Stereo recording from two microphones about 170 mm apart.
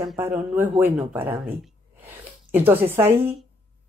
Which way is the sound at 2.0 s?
10° right (ahead or behind).